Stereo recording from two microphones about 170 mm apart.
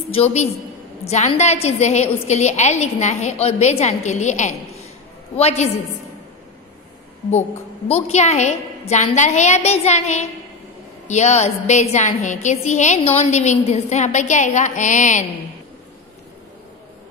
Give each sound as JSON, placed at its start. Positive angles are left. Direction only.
{"t": 0.1, "sound": "a woman's voice", "side_deg": 40}
{"t": 7.9, "sound": "a woman's voice", "side_deg": 40}